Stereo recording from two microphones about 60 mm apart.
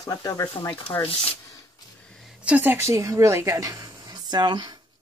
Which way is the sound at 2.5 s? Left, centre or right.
Centre.